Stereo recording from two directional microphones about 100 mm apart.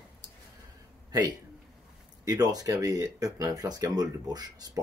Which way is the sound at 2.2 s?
40° right (ahead or behind).